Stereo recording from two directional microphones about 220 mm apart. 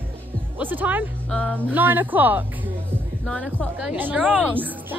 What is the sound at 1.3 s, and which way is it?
Speech, 5° left (ahead or behind).